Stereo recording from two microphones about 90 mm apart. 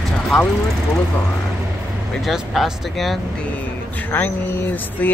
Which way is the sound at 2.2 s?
Centre (ahead or behind).